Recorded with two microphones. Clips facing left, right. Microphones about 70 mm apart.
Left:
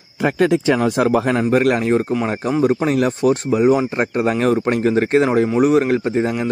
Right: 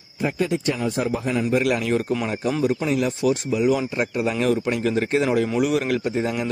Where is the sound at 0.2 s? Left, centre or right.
Left.